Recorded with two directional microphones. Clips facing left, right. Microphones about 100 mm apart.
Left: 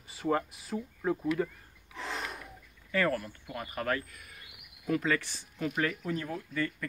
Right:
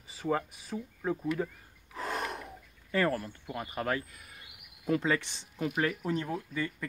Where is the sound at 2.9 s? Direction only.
30° right (ahead or behind).